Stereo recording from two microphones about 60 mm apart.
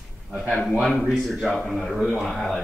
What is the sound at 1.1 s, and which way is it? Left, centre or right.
A man's voice, centre.